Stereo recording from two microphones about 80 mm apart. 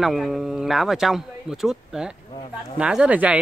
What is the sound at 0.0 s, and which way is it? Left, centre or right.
Speech, centre.